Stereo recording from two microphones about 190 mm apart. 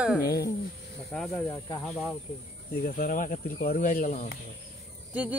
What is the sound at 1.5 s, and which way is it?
Speech, 20° left (ahead or behind).